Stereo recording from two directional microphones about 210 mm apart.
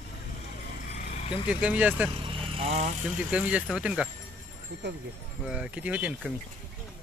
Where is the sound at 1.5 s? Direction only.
5° right (ahead or behind).